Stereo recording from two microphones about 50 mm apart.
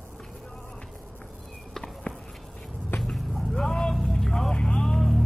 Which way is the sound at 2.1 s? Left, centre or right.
Left.